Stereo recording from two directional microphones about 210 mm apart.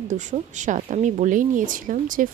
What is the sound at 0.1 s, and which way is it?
Speech, 35° right (ahead or behind).